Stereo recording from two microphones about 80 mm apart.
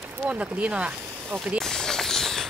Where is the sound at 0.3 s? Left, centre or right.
Centre.